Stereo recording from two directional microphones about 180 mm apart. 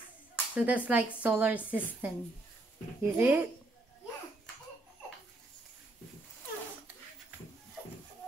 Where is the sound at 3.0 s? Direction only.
10° right (ahead or behind).